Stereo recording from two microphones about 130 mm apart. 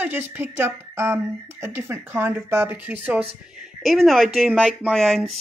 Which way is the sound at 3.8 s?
Centre (ahead or behind).